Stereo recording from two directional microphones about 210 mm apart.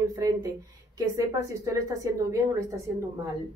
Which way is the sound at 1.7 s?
15° right (ahead or behind).